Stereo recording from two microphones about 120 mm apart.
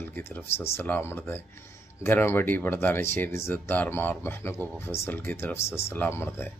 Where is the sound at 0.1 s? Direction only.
20° left (ahead or behind).